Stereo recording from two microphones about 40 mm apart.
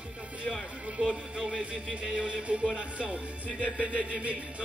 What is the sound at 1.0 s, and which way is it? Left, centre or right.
Music, right.